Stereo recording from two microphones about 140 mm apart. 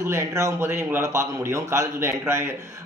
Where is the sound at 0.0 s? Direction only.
20° right (ahead or behind).